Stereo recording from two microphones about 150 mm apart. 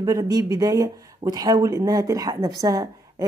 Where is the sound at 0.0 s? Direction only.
25° right (ahead or behind).